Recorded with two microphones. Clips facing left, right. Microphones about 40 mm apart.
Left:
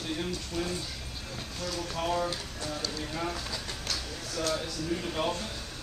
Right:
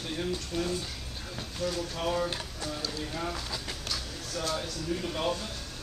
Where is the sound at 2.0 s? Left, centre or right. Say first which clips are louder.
Left 2 dB; centre.